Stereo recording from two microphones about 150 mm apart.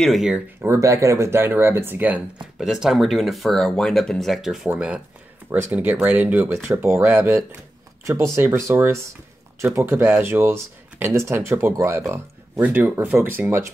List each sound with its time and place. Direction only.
0.0 s speech: centre (ahead or behind)
0.6 s speech: 20° right (ahead or behind)